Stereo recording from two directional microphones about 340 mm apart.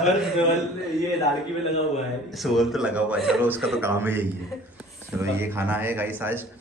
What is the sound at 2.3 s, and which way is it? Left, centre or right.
A woman's voice, centre.